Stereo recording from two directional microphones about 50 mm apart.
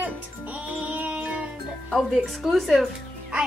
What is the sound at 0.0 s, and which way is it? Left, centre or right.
Music, right.